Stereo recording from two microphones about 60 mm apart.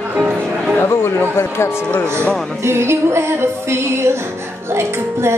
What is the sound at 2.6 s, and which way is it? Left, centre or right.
Music, right.